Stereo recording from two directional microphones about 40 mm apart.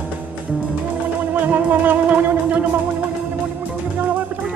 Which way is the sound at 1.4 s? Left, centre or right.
Right.